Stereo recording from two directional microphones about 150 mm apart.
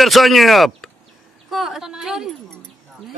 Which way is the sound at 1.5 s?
Centre (ahead or behind).